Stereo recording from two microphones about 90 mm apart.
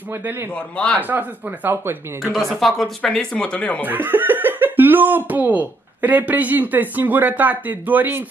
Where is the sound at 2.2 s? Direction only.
Centre (ahead or behind).